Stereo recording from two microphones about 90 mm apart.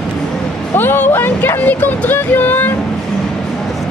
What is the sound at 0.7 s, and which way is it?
Speech, 20° left (ahead or behind).